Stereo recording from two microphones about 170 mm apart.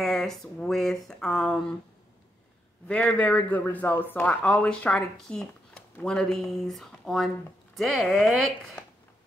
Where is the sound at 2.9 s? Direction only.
5° left (ahead or behind).